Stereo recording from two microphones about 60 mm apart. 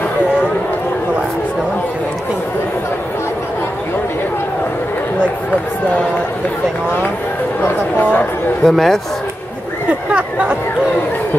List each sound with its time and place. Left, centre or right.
7.6 s speech: left
8.6 s a man's voice: centre
10.1 s a sound: centre